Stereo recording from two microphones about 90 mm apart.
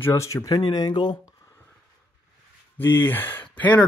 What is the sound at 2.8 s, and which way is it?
Speech, 25° left (ahead or behind).